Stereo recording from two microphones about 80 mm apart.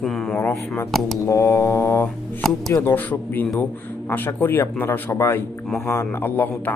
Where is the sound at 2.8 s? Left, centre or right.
Left.